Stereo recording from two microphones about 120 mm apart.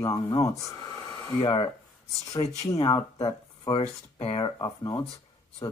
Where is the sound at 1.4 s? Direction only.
50° left (ahead or behind).